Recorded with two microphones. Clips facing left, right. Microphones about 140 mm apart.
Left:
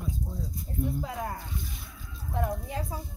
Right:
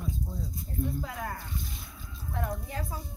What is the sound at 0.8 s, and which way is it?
A woman's voice, 15° left (ahead or behind).